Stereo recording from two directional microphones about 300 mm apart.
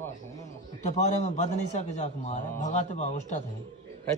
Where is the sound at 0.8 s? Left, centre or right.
Left.